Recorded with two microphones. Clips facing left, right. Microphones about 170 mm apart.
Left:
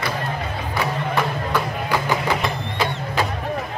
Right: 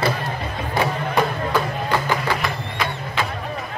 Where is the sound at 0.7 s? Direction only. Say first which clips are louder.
Right 2 dB; 15° right (ahead or behind).